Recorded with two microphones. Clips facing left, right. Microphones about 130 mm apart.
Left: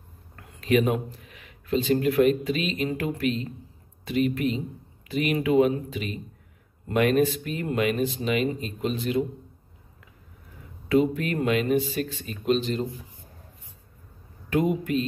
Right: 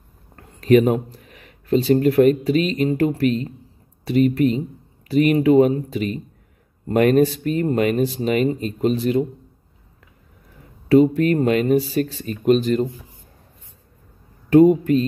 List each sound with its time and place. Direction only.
0.4 s speech: 40° right (ahead or behind)
10.9 s speech: 40° right (ahead or behind)
14.5 s speech: 35° right (ahead or behind)